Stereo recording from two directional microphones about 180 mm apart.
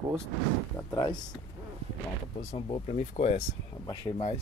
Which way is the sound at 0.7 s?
20° left (ahead or behind).